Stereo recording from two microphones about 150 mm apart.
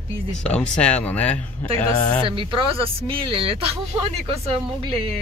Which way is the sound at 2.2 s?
35° right (ahead or behind).